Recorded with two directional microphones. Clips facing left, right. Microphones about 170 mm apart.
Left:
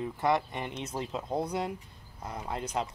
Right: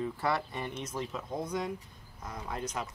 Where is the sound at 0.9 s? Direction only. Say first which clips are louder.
Left 6 dB; 35° left (ahead or behind).